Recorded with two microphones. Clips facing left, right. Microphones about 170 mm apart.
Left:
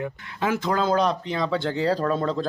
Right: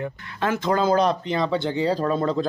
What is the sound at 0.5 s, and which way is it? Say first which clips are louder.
Speech: right 2 dB; centre (ahead or behind).